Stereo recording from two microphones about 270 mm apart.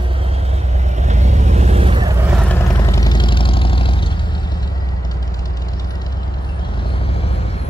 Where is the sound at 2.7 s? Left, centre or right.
Centre.